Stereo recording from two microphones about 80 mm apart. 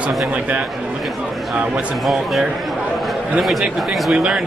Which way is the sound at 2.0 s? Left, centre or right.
Centre.